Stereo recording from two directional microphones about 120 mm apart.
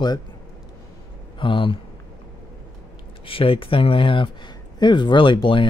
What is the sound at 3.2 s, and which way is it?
Speech, 50° left (ahead or behind).